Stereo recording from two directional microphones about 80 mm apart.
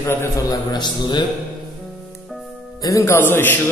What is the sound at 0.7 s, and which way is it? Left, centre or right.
Speech, left.